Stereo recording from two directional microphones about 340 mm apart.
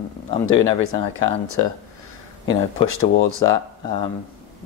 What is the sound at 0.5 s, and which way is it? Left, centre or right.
Speech, right.